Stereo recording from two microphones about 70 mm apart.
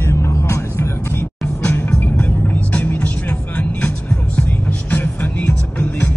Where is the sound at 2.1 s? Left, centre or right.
Left.